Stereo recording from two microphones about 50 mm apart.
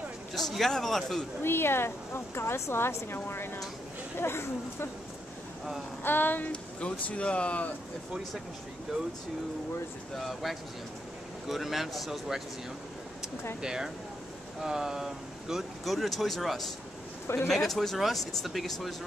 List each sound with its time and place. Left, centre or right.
0.3 s speech: centre
1.4 s speech: left
6.0 s a sound: left
6.5 s speech: left
10.1 s speech: centre
13.6 s speech: centre